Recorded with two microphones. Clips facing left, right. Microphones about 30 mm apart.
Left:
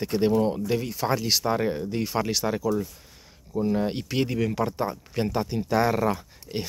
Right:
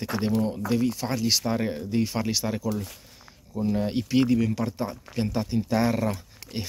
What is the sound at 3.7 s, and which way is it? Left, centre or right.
Speech, centre.